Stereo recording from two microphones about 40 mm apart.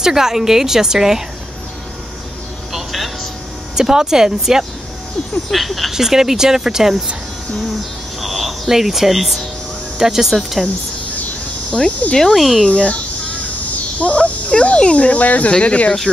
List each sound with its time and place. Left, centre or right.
0.0 s a woman's voice: centre
2.7 s music: centre
3.7 s a woman's voice: centre
5.5 s speech: centre
5.9 s a woman's voice: centre
8.2 s a sound: centre
9.9 s a woman's voice: centre
12.1 s cricket: centre
12.4 s speech: centre
13.9 s speech: left